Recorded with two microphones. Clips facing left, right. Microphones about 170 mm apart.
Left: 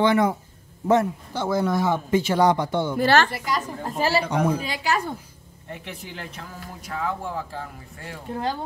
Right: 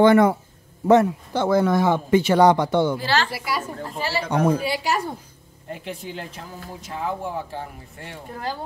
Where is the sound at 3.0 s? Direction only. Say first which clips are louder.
Left 5 dB; 50° left (ahead or behind).